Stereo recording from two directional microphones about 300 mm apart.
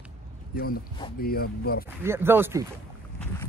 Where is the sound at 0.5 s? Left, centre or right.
Left.